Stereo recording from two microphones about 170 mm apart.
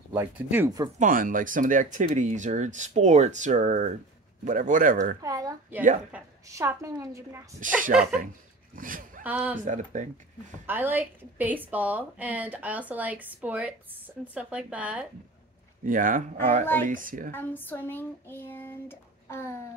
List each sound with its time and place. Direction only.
0.1 s a woman's voice: 10° right (ahead or behind)
0.9 s speech: 50° right (ahead or behind)
5.2 s a woman's voice: 20° right (ahead or behind)
8.7 s speech: 55° right (ahead or behind)
9.2 s a woman's voice: 10° right (ahead or behind)
9.6 s speech: 45° right (ahead or behind)
10.7 s a woman's voice: 10° right (ahead or behind)
15.8 s speech: 50° right (ahead or behind)
17.3 s speech: 10° left (ahead or behind)